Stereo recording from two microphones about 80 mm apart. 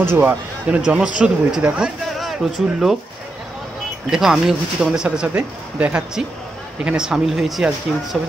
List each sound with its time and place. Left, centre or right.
0.0 s speech: right
0.7 s speech: centre
4.1 s speech: centre